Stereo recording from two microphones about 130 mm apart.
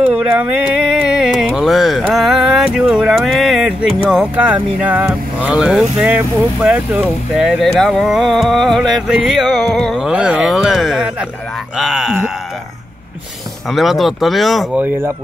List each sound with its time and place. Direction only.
0.0 s a sound: 10° right (ahead or behind)
4.1 s speech: 10° right (ahead or behind)
13.7 s speech: centre (ahead or behind)
14.8 s speech: 20° right (ahead or behind)